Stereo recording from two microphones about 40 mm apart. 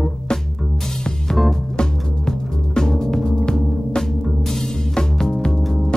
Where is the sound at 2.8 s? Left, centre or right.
Centre.